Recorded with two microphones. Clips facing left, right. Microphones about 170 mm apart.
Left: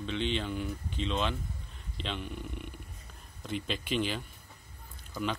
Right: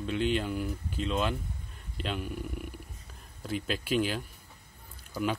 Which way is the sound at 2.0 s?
5° right (ahead or behind).